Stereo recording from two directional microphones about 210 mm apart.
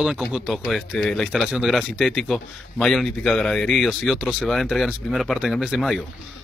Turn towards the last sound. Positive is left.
turn(degrees=0)  # may be behind; listen again after turning